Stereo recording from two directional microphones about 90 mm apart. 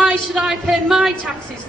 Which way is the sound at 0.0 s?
5° right (ahead or behind).